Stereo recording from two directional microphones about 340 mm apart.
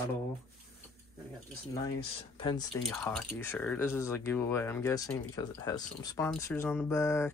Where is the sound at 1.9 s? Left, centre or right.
Centre.